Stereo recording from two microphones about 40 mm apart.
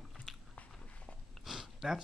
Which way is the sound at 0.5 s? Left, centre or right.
Left.